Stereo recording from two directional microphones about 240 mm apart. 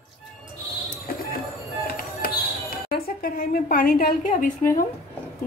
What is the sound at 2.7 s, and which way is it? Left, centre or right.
A woman's voice, left.